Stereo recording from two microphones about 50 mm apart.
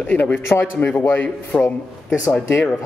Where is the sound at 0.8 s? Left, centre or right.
Left.